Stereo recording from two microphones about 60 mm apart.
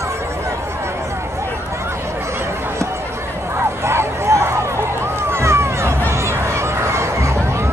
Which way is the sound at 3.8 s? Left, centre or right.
Right.